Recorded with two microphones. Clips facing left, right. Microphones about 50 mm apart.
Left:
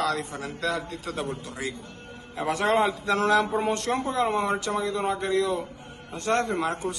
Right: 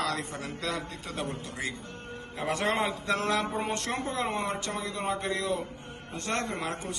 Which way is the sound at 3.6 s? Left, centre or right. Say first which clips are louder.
Left 5 dB; right.